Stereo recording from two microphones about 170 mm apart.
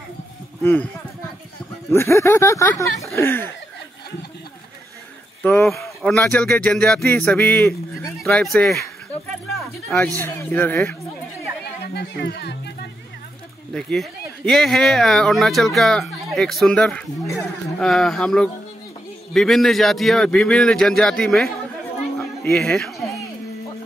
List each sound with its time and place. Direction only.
0.6 s speech: 15° left (ahead or behind)
1.9 s speech: 15° left (ahead or behind)
5.4 s speech: 15° left (ahead or behind)
5.7 s speech: centre (ahead or behind)
7.9 s a sound: centre (ahead or behind)
8.7 s a sound: 15° left (ahead or behind)
10.2 s speech: 10° left (ahead or behind)
11.8 s chatter: 75° left (ahead or behind)
13.7 s a man's voice: 5° left (ahead or behind)
22.5 s a man's voice: 5° left (ahead or behind)